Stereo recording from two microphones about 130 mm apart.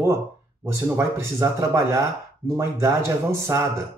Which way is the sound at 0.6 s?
20° right (ahead or behind).